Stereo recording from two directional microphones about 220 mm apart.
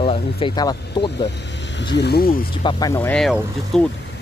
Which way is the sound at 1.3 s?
55° left (ahead or behind).